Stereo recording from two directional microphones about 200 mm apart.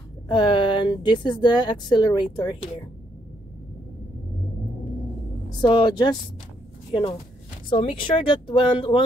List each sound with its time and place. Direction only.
0.3 s speech: 25° left (ahead or behind)
5.6 s speech: 25° left (ahead or behind)